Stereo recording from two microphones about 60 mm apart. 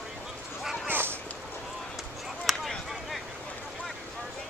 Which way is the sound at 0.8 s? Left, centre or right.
Right.